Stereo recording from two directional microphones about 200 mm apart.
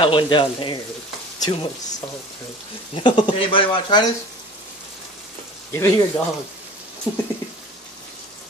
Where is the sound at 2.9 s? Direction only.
25° left (ahead or behind).